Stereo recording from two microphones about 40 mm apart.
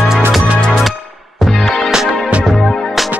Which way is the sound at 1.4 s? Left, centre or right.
Centre.